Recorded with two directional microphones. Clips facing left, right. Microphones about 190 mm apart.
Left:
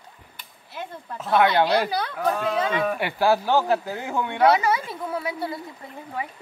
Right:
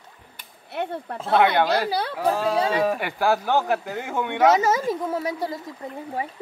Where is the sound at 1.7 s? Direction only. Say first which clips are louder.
Even; 30° right (ahead or behind).